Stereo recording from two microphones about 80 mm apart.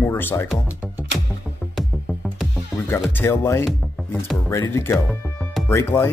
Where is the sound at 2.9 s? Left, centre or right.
Left.